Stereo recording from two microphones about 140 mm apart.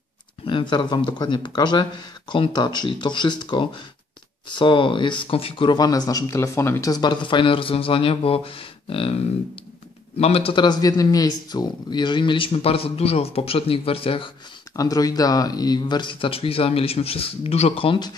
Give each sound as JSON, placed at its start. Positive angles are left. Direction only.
{"t": 0.5, "sound": "speech", "side_deg": 35}
{"t": 14.8, "sound": "speech", "side_deg": 25}